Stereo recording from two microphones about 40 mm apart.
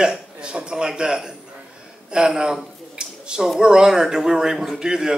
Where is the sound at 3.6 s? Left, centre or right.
Centre.